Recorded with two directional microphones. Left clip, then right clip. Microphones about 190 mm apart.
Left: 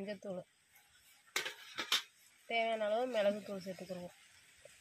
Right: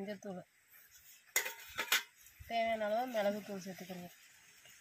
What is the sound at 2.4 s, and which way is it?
Speech, 20° left (ahead or behind).